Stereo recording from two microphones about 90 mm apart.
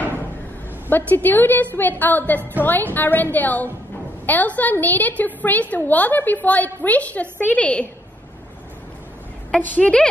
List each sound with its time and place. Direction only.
0.8 s a woman's voice: 20° left (ahead or behind)
9.6 s a woman's voice: 15° left (ahead or behind)